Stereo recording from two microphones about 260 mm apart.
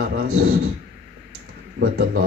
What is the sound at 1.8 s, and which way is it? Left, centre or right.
Speech, right.